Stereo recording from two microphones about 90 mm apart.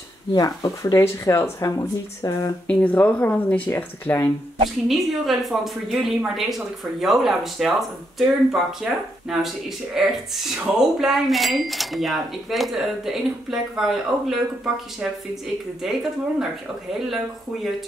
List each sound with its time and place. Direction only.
0.3 s speech: 45° left (ahead or behind)
2.6 s speech: 15° left (ahead or behind)
4.8 s speech: centre (ahead or behind)